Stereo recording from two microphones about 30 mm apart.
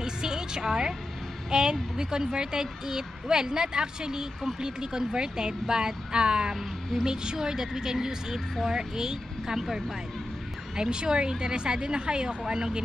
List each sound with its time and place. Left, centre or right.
0.0 s music: right
1.5 s speech: right
6.9 s a woman's voice: centre
7.3 s speech: right
10.8 s speech: right